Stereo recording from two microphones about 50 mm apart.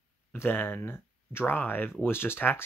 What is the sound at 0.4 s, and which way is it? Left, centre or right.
Speech, left.